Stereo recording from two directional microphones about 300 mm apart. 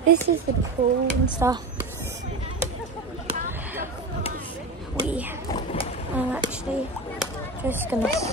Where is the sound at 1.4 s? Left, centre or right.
Centre.